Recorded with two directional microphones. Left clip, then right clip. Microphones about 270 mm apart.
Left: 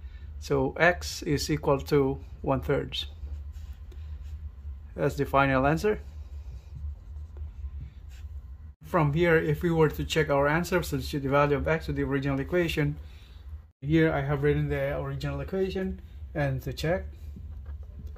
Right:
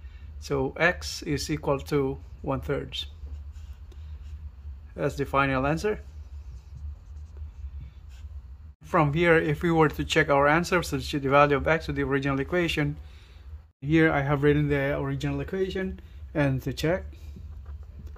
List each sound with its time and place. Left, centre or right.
0.4 s speech: centre
4.9 s speech: centre
8.9 s speech: centre
13.7 s speech: centre; by 17.2 s right